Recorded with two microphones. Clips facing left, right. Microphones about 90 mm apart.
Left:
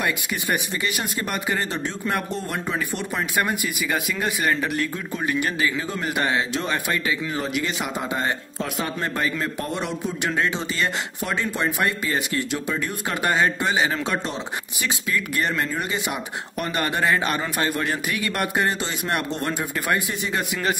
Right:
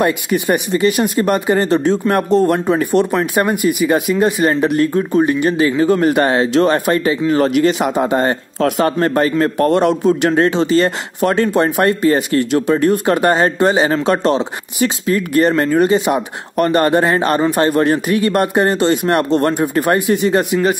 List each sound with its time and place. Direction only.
0.0 s speech: 50° right (ahead or behind)
3.2 s speech: 40° right (ahead or behind)
4.9 s speech: 40° right (ahead or behind)
5.8 s speech: 55° right (ahead or behind)
6.9 s speech: 45° right (ahead or behind)
7.3 s a man's voice: 60° right (ahead or behind)
10.5 s speech: 70° right (ahead or behind)
10.8 s speech: 55° right (ahead or behind); by 18.8 s 40° right (ahead or behind)
18.8 s speech: 50° right (ahead or behind)